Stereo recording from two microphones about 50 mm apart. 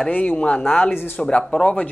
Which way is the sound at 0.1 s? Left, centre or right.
Left.